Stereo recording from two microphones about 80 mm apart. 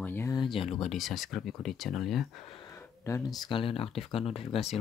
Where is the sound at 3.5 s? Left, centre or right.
Left.